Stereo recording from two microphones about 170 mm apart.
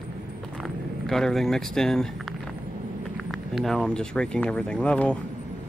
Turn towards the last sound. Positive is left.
turn(degrees=5)  # may be behind; listen again after turning